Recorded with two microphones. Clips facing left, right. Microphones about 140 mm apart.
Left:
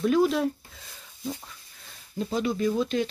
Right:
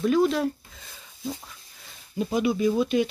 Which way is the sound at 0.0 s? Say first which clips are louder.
Right 1 dB; centre (ahead or behind).